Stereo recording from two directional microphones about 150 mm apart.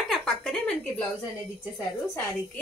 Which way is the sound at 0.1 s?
5° left (ahead or behind).